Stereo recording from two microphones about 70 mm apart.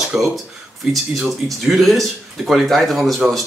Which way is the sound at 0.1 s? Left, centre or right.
Centre.